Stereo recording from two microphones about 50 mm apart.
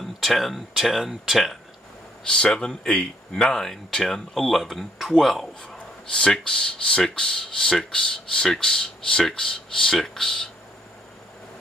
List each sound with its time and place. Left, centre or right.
0.2 s speech: centre
2.2 s speech: centre
6.4 s speech: left